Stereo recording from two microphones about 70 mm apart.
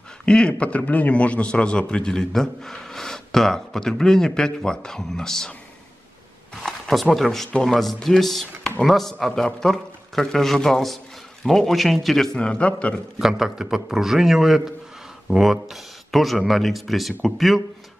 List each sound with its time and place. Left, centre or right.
0.2 s a man's voice: centre
6.5 s a sound: centre
7.6 s a man's voice: centre
12.4 s a man's voice: centre
13.2 s a man's voice: centre